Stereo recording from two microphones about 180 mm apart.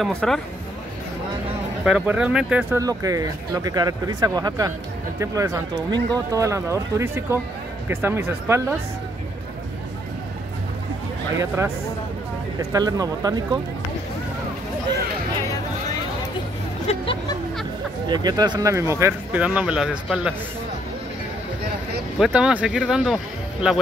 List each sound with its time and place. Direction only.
0.0 s speech: 5° left (ahead or behind)
1.9 s speech: 5° right (ahead or behind)
2.8 s speech: 20° right (ahead or behind)
11.3 s speech: 15° right (ahead or behind)
12.7 s speech: 20° right (ahead or behind)
16.8 s a sound: 30° left (ahead or behind)
18.0 s speech: 25° right (ahead or behind); by 20.3 s 5° right (ahead or behind)
22.2 s speech: 5° right (ahead or behind)